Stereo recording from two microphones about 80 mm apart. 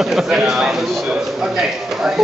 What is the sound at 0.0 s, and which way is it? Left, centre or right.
A man's voice, centre.